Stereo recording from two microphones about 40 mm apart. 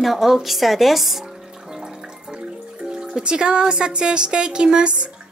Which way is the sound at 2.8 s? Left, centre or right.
Centre.